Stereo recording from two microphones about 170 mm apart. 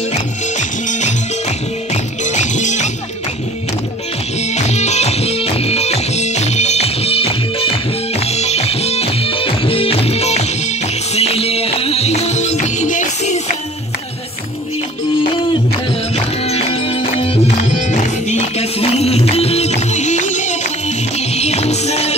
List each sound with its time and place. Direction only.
0.1 s music: 45° left (ahead or behind)
2.2 s music: 45° left (ahead or behind)
4.6 s music: 40° left (ahead or behind)
16.4 s music: 35° left (ahead or behind)